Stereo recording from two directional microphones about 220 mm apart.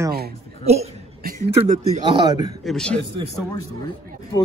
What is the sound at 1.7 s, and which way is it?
Speech, 35° right (ahead or behind).